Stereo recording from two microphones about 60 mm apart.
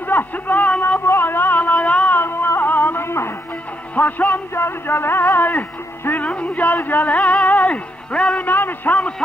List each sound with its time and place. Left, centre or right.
0.0 s a sound: left
1.0 s music: left
2.1 s music: left
3.9 s music: left
4.6 s music: left
6.3 s a sound: left
7.2 s music: centre
7.4 s music: left
8.4 s a sound: left